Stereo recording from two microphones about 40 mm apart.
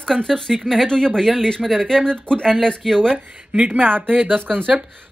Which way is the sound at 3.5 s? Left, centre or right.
Right.